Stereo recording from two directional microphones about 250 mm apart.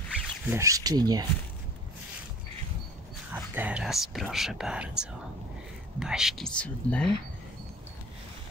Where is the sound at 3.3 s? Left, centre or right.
Centre.